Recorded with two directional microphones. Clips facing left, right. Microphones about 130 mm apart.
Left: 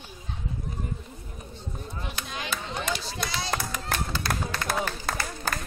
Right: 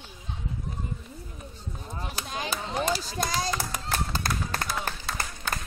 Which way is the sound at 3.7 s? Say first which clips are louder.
Even; 40° right (ahead or behind).